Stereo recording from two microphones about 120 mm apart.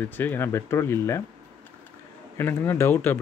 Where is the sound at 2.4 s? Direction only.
20° left (ahead or behind).